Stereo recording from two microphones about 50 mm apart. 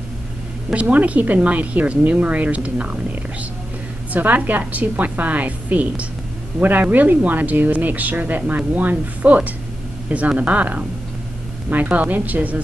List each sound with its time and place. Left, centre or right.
0.7 s a woman's voice: right